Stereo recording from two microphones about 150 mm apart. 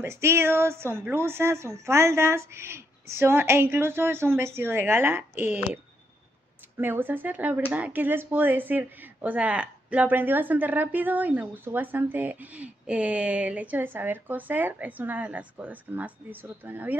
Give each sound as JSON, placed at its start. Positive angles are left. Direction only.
{"t": 0.0, "sound": "speech", "side_deg": -15}
{"t": 6.8, "sound": "speech", "side_deg": -15}